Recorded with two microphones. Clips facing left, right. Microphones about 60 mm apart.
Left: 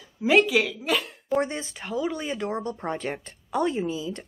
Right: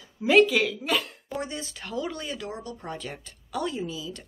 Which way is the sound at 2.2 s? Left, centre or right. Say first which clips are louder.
Left 6 dB; left.